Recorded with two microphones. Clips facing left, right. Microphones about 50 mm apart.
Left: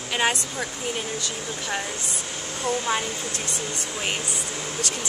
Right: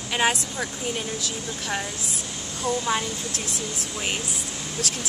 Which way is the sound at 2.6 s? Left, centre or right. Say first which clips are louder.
Even; left.